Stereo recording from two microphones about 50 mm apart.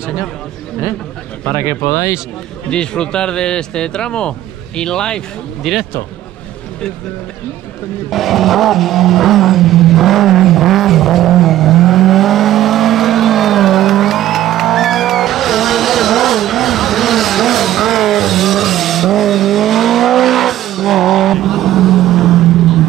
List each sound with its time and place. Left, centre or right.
1.6 s speech: left
2.7 s speech: centre
5.6 s speech: centre
8.1 s vehicle: centre